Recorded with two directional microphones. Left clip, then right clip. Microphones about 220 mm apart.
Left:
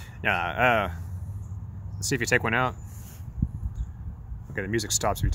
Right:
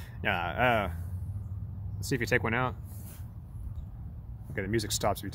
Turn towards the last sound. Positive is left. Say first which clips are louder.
# left 3 dB
turn(degrees=0)  # may be behind; listen again after turning